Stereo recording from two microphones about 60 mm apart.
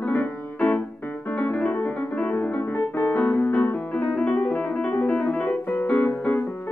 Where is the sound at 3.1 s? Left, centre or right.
Left.